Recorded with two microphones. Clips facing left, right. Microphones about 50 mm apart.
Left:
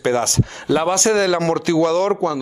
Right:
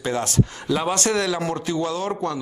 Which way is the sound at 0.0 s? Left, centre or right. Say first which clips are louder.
Left 4 dB; left.